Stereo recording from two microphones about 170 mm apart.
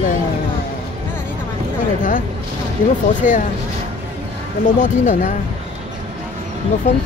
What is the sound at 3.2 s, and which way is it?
Speech, 50° left (ahead or behind).